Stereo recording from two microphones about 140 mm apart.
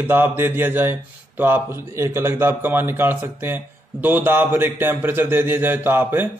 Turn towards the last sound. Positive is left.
turn(degrees=-15)  # may be behind; listen again after turning